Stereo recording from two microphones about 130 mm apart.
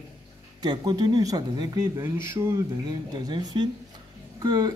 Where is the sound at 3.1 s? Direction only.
35° right (ahead or behind).